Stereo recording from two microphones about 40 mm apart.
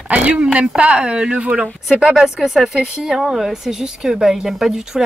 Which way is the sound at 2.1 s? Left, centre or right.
Centre.